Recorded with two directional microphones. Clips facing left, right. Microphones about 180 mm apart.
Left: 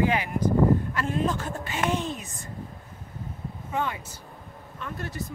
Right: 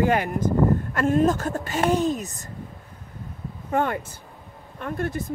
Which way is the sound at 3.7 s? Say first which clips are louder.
Right 6 dB; 55° right (ahead or behind).